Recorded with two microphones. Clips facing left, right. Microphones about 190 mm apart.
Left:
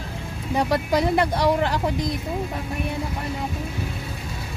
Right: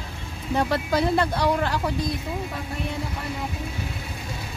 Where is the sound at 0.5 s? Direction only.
15° left (ahead or behind).